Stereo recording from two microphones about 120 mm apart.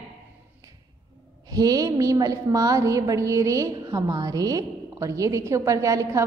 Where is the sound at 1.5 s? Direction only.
30° right (ahead or behind).